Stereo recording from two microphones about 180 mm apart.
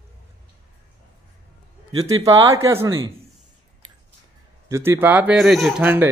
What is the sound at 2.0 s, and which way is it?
Speech, 15° right (ahead or behind).